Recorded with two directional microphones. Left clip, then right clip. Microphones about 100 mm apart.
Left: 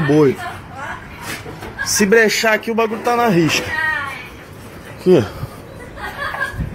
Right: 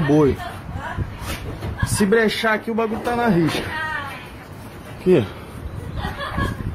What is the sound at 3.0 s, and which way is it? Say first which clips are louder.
Speech: left 6 dB; 10° left (ahead or behind).